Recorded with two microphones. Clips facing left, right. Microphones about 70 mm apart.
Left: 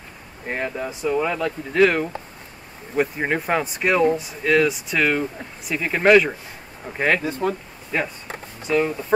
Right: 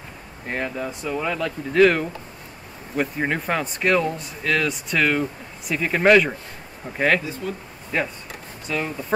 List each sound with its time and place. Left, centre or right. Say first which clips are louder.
0.5 s speech: left 1 dB; centre
7.2 s speech: left 6 dB; left
7.9 s speech: even; centre